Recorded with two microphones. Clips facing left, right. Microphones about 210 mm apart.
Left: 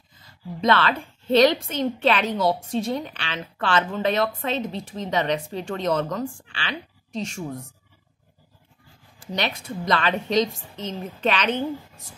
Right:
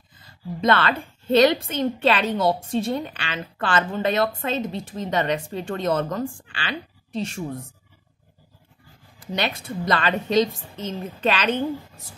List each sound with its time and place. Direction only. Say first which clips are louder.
0.6 s a woman's voice: even; centre (ahead or behind)
9.3 s a woman's voice: right 1 dB; 5° right (ahead or behind)